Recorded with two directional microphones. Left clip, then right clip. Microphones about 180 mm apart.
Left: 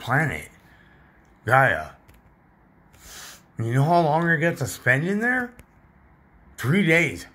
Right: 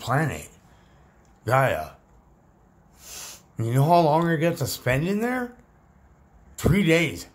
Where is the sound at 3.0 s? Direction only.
10° right (ahead or behind).